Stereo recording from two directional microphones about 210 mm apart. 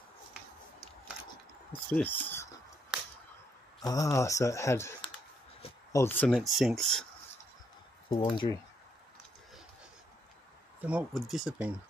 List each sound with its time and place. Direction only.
1.7 s speech: 10° left (ahead or behind)
3.8 s speech: 15° left (ahead or behind)
5.0 s a sound: 25° left (ahead or behind); by 7.1 s centre (ahead or behind)
8.1 s speech: 20° left (ahead or behind)
10.9 s speech: 5° right (ahead or behind)